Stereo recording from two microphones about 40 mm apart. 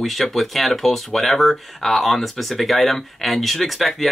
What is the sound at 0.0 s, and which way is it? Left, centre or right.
Speech, centre.